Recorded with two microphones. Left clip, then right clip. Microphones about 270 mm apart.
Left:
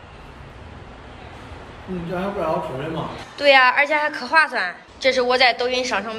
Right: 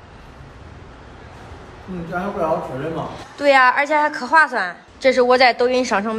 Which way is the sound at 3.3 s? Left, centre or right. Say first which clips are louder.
Even; centre.